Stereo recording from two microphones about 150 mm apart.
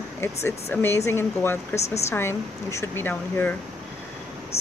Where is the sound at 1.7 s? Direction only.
45° left (ahead or behind).